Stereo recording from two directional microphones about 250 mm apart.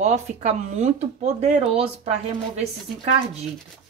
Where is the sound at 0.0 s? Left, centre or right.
Right.